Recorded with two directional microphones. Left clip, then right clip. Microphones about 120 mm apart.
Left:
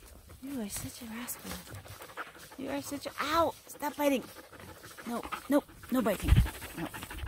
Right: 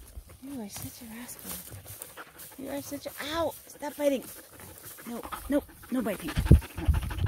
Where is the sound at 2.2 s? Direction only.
20° left (ahead or behind).